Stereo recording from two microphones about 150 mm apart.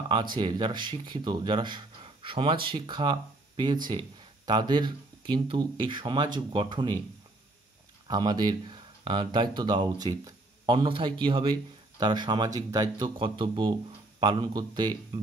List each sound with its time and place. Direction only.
0.4 s speech: 30° right (ahead or behind)
8.1 s speech: 30° right (ahead or behind)